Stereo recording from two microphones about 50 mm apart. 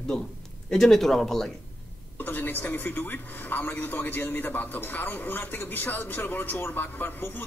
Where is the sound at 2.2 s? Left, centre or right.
Left.